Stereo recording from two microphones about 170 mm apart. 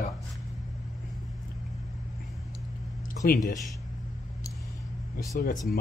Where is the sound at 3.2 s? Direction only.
60° left (ahead or behind).